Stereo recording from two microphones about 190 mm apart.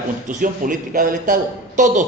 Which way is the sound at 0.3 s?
45° right (ahead or behind).